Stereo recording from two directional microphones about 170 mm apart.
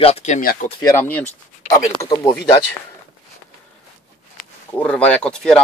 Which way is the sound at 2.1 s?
30° left (ahead or behind).